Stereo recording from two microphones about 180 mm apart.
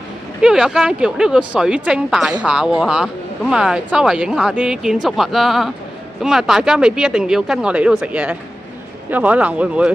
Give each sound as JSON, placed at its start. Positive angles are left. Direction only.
{"t": 0.4, "sound": "speech", "side_deg": -5}